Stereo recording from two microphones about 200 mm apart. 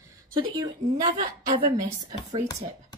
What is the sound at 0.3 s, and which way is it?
Speech, 20° right (ahead or behind).